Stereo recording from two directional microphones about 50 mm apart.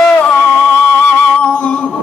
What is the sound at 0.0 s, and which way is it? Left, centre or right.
Music, left.